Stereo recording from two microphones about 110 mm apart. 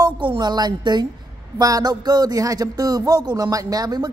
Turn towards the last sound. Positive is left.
turn(degrees=-35)  # may be behind; listen again after turning